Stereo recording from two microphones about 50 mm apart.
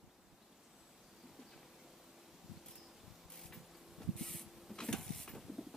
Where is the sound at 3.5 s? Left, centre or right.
Centre.